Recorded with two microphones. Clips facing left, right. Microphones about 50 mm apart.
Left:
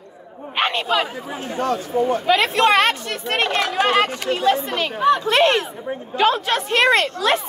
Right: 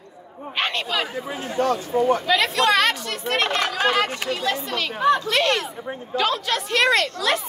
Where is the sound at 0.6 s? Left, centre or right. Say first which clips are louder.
Left 4 dB; left.